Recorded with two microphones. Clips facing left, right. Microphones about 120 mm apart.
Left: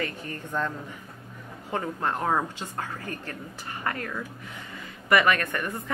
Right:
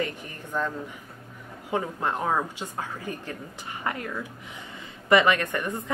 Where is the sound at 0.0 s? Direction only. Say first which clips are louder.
Right 1 dB; 15° right (ahead or behind).